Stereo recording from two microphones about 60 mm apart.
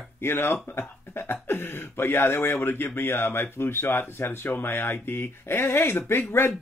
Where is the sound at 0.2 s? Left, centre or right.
Left.